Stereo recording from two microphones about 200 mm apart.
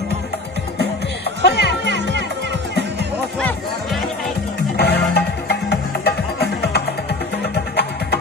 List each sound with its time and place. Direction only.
1.4 s music: 55° left (ahead or behind)
3.3 s music: 5° left (ahead or behind)
4.7 s music: 55° left (ahead or behind)